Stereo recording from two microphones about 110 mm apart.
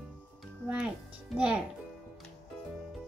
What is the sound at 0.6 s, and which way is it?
Speech, 10° right (ahead or behind).